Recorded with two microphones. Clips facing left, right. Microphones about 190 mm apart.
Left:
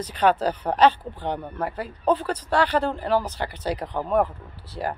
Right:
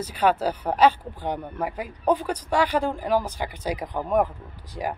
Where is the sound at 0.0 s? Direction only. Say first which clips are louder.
Left 1 dB; 10° right (ahead or behind).